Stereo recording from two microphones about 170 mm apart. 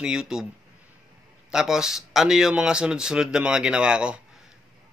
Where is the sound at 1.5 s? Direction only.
5° right (ahead or behind).